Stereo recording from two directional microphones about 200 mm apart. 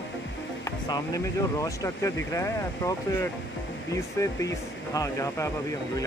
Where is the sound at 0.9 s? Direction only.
15° left (ahead or behind).